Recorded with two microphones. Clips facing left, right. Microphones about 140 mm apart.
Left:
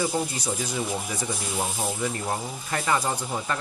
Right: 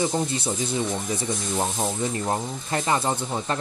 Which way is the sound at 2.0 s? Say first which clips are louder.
Right 3 dB; 35° right (ahead or behind).